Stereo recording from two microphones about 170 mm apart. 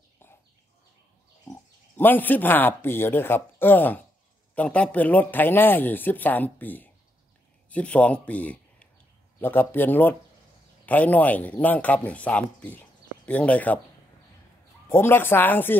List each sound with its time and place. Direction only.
2.0 s speech: 10° left (ahead or behind)
14.9 s speech: 15° left (ahead or behind)